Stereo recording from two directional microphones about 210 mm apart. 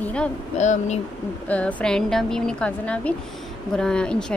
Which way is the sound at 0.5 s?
35° left (ahead or behind).